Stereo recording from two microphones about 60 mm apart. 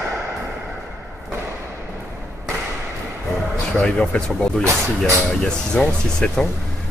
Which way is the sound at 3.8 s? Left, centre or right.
Centre.